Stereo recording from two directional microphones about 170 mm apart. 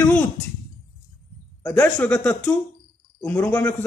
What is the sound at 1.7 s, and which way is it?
Speech, 10° left (ahead or behind).